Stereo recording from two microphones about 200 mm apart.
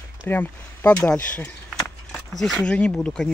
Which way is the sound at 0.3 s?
10° left (ahead or behind).